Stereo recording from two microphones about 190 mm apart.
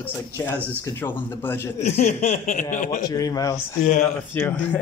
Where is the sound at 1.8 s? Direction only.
35° left (ahead or behind).